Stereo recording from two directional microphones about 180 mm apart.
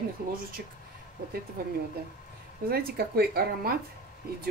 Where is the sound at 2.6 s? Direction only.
55° right (ahead or behind).